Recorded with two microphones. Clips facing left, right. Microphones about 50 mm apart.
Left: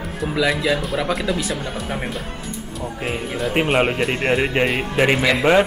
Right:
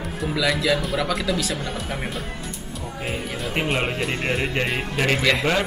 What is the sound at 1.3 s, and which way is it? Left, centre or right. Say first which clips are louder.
Speech: left 2 dB; left.